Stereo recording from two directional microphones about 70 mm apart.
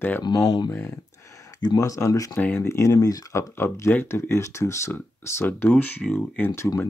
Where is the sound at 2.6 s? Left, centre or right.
Left.